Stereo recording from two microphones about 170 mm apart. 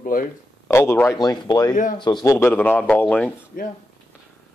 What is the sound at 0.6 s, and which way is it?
Speech, 15° left (ahead or behind).